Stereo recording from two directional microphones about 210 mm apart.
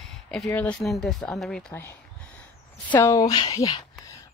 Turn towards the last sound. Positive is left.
turn(degrees=25)  # may be behind; listen again after turning